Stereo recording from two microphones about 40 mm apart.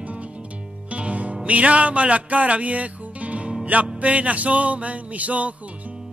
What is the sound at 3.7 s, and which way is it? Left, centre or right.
Music, right.